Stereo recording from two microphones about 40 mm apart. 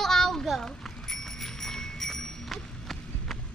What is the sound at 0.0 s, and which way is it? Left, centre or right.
Bicycle bell, centre.